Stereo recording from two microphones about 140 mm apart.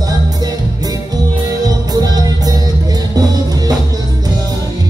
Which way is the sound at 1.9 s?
25° right (ahead or behind).